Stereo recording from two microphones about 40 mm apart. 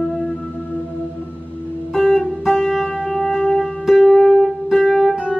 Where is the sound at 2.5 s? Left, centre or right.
Centre.